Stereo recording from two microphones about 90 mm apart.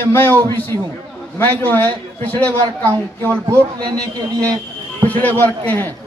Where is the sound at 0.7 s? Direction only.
35° left (ahead or behind).